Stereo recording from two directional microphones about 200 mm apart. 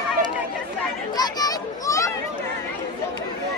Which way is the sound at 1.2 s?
20° left (ahead or behind).